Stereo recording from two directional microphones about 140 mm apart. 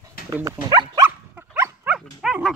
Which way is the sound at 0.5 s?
30° right (ahead or behind).